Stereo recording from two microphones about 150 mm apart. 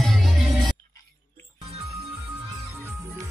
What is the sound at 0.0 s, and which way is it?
Music, centre (ahead or behind).